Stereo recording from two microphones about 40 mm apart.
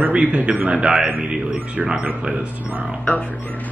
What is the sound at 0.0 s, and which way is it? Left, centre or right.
A man's voice, right.